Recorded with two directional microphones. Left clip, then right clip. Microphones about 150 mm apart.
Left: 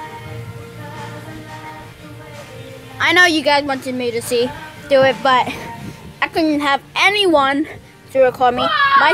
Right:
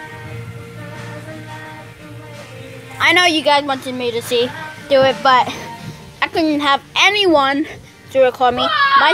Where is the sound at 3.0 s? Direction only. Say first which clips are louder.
Left 1 dB; 10° left (ahead or behind).